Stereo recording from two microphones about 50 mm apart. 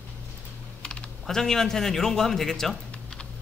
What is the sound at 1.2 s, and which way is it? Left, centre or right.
A man's voice, centre.